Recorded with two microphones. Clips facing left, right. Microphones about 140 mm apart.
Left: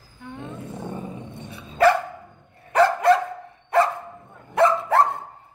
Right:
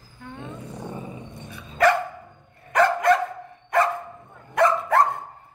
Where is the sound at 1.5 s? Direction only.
30° left (ahead or behind).